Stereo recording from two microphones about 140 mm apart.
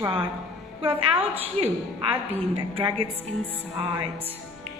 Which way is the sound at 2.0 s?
40° right (ahead or behind).